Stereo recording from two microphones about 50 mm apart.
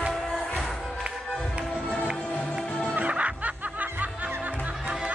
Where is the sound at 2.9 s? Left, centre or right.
Right.